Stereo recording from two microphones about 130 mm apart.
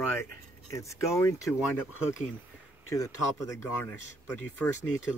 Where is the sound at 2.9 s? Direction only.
25° left (ahead or behind).